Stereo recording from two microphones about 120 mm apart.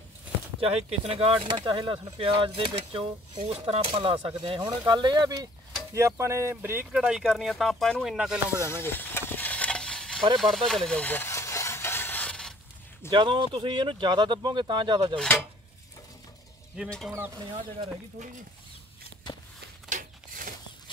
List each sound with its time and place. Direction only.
0.6 s speech: 55° right (ahead or behind); by 5.5 s 35° right (ahead or behind)
5.9 s speech: 25° right (ahead or behind); by 8.4 s centre (ahead or behind)
8.5 s speech: 20° left (ahead or behind)
9.3 s mechanisms: 15° left (ahead or behind)
10.4 s stir: centre (ahead or behind)
13.1 s speech: 40° right (ahead or behind)
15.1 s a sound: 10° left (ahead or behind)
16.8 s speech: 10° right (ahead or behind)
17.5 s speech: 45° right (ahead or behind)
19.9 s a sound: 90° right